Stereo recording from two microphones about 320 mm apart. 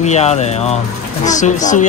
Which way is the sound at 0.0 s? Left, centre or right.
Left.